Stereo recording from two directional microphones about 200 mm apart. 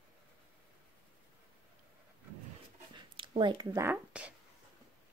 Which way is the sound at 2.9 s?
25° right (ahead or behind).